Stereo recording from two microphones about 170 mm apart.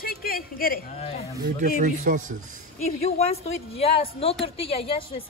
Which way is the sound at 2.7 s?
40° left (ahead or behind).